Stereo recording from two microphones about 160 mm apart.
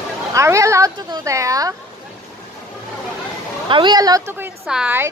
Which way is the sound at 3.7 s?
25° right (ahead or behind).